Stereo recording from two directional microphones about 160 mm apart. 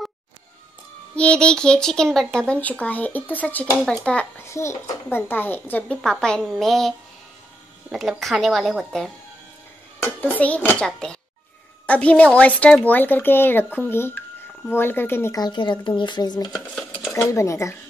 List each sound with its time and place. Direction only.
1.1 s speech: 5° left (ahead or behind)
4.5 s speech: 20° left (ahead or behind)